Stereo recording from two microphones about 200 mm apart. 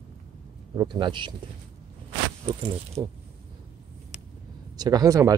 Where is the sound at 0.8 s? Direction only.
25° right (ahead or behind).